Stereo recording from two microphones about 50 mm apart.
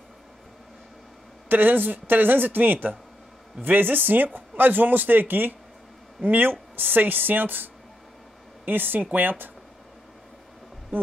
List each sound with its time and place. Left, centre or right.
1.5 s speech: right
10.9 s speech: right